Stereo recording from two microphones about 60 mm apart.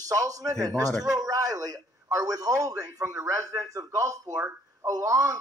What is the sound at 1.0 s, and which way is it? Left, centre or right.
A man's voice, right.